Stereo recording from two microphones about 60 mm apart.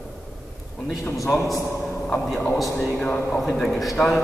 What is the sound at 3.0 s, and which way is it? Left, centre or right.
Speech, centre.